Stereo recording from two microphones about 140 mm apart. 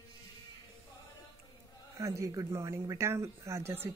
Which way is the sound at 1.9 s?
20° right (ahead or behind).